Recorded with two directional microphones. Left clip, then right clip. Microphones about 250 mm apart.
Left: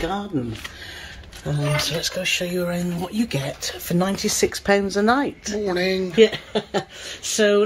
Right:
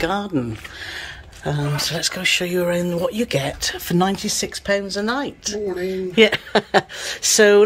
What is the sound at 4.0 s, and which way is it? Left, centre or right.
Speech, centre.